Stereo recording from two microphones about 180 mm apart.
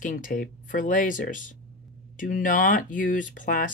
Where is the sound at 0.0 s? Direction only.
45° left (ahead or behind).